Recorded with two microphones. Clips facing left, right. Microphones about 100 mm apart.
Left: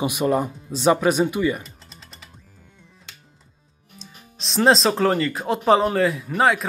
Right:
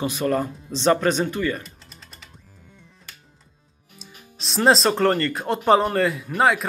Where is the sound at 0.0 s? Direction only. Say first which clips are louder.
Left 2 dB; 15° left (ahead or behind).